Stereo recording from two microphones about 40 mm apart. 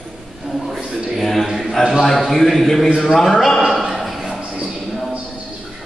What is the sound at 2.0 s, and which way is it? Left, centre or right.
A man's voice, centre.